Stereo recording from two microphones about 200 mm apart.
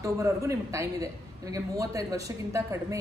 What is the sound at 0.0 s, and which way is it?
A woman's voice, 15° right (ahead or behind).